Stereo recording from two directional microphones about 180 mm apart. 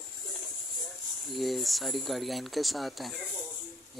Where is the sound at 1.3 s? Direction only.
Centre (ahead or behind).